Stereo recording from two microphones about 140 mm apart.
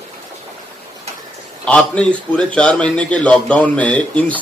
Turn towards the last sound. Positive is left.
turn(degrees=10)  # may be behind; listen again after turning